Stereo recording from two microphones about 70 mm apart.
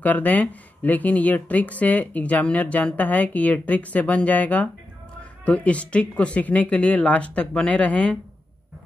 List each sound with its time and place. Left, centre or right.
0.0 s speech: left